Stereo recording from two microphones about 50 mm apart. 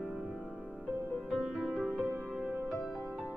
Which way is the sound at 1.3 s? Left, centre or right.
Centre.